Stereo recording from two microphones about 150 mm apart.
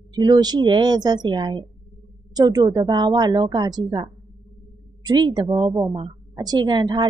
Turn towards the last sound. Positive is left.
turn(degrees=-30)  # may be behind; listen again after turning